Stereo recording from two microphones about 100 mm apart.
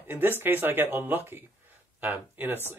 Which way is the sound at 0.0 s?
20° right (ahead or behind).